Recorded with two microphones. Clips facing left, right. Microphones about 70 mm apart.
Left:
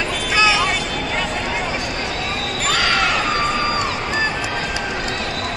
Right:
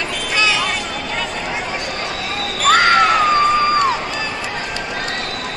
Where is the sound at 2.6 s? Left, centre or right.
Right.